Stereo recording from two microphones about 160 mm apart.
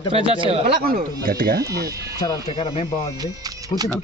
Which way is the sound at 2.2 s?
25° left (ahead or behind).